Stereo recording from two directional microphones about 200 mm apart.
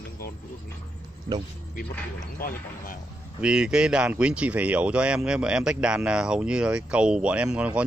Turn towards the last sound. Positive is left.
turn(degrees=-5)  # may be behind; listen again after turning